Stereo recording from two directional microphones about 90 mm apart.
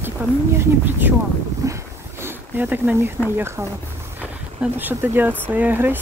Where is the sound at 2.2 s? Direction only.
25° right (ahead or behind).